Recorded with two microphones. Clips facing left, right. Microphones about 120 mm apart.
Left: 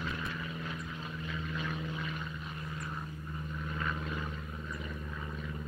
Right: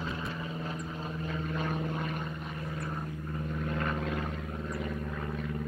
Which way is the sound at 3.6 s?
60° right (ahead or behind).